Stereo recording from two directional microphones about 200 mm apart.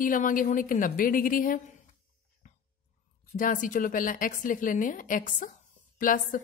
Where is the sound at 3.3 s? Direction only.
40° left (ahead or behind).